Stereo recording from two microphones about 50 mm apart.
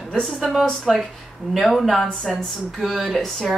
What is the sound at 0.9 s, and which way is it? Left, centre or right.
Speech, centre.